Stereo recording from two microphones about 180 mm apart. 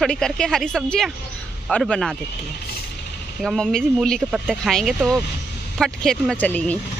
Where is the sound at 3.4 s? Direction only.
Centre (ahead or behind).